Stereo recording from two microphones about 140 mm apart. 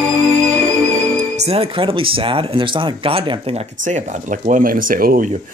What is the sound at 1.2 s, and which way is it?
Speech, 50° right (ahead or behind).